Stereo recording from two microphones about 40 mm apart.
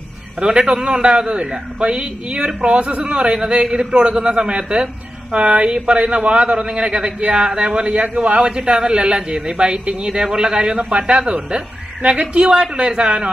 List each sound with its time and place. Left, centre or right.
0.4 s a man's voice: right